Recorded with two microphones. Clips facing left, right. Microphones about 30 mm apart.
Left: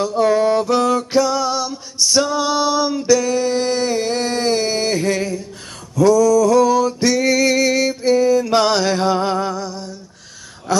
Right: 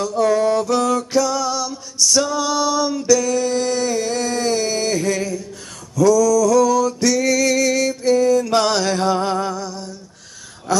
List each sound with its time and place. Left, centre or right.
0.0 s music: left
5.9 s male singing: left; by 9.9 s centre
10.7 s a sound: centre